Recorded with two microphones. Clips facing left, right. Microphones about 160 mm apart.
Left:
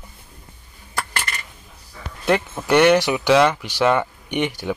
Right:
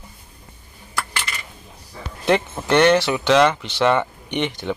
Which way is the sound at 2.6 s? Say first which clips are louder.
Left 1 dB; 10° left (ahead or behind).